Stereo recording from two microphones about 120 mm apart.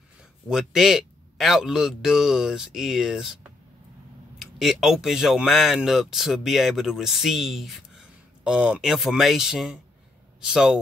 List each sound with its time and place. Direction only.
0.5 s speech: 5° right (ahead or behind)
4.4 s speech: centre (ahead or behind)